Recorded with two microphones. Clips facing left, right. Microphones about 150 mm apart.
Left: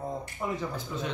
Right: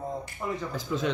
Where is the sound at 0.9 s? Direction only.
90° right.